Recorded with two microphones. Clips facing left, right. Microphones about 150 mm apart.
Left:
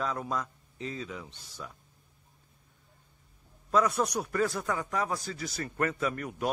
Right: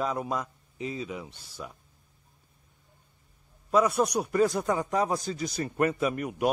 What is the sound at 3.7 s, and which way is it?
A man's voice, 10° right (ahead or behind).